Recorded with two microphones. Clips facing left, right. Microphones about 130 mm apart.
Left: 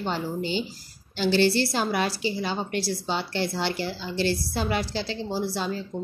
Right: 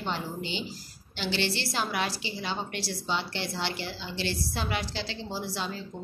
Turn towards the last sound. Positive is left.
turn(degrees=40)  # may be behind; listen again after turning